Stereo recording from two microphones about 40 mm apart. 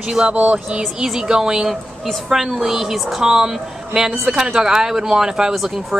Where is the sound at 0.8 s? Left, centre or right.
Centre.